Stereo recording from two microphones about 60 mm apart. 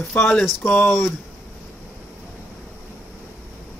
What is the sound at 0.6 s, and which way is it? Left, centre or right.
Speech, left.